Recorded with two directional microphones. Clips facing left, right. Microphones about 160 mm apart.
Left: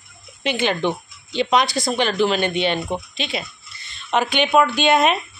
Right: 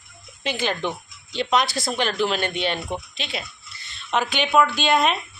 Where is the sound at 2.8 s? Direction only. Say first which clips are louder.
Left 4 dB; 20° left (ahead or behind).